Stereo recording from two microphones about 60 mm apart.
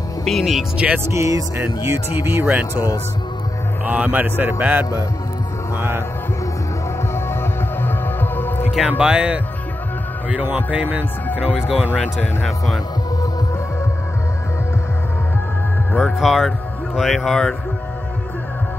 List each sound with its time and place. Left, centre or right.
0.2 s speech: centre
0.7 s speech: right
1.0 s speech: right
2.1 s speech: right
3.8 s speech: right
5.8 s speech: right
7.8 s music: left
8.8 s speech: centre
11.9 s speech: left
12.4 s speech: centre
16.0 s speech: centre